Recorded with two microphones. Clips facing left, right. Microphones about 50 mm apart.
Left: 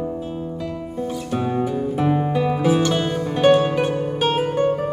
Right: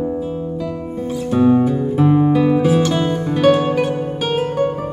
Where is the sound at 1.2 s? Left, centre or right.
Centre.